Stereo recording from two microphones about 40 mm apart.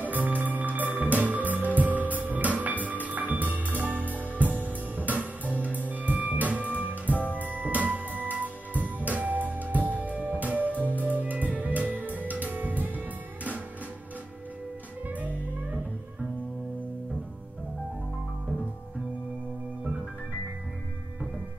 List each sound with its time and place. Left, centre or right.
0.0 s music: right
4.0 s music: left
4.4 s music: right
7.1 s music: left
7.3 s music: right
15.0 s music: right